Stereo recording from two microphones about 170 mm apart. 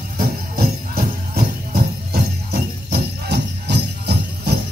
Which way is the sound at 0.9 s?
60° right (ahead or behind).